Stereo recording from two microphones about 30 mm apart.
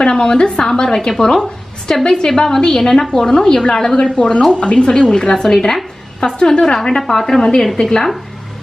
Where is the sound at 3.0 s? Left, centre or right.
Centre.